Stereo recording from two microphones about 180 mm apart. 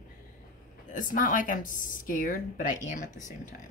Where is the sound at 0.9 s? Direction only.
50° left (ahead or behind).